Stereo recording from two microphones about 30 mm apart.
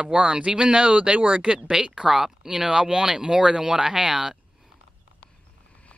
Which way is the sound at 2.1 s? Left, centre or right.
Centre.